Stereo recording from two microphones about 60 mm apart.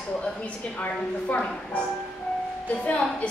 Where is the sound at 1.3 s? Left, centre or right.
Left.